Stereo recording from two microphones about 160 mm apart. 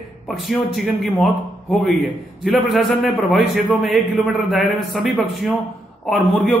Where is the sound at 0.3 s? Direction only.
Centre (ahead or behind).